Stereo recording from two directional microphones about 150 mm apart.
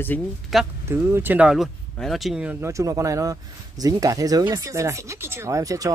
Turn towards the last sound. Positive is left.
turn(degrees=-20)  # may be behind; listen again after turning